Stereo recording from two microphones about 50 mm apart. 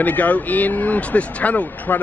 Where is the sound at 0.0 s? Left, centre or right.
Left.